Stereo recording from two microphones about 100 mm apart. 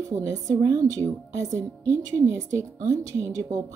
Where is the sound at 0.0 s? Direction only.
30° right (ahead or behind).